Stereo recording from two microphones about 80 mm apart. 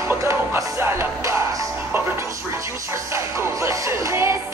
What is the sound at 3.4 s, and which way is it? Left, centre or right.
Music, right.